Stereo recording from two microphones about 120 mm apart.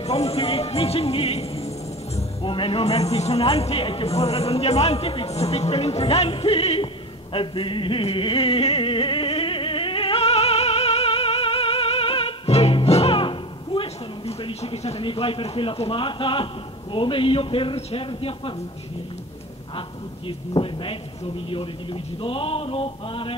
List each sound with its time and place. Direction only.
0.0 s a man's voice: 60° left (ahead or behind)
7.3 s music: 45° left (ahead or behind)
14.6 s a man's voice: 60° left (ahead or behind)
20.2 s speech: 45° left (ahead or behind)